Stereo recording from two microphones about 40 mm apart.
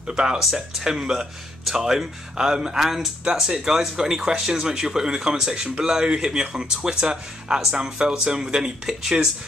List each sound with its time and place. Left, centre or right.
0.0 s speech: centre
0.4 s speech: centre; by 8.7 s right